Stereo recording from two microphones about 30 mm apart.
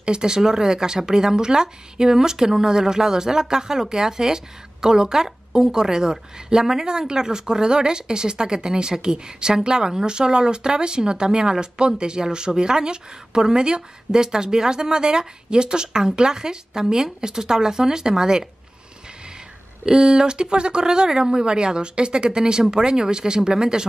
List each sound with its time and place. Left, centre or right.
0.0 s a woman's voice: right
19.9 s a woman's voice: right